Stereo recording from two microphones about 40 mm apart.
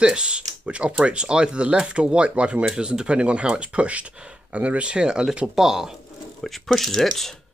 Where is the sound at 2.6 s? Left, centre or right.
Centre.